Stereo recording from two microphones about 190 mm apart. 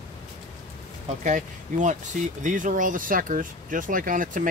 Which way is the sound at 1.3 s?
40° right (ahead or behind).